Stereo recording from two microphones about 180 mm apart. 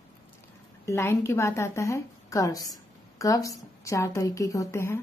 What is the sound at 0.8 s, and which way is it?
A woman's voice, 15° left (ahead or behind).